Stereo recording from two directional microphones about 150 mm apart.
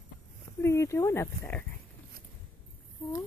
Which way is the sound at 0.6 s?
20° left (ahead or behind).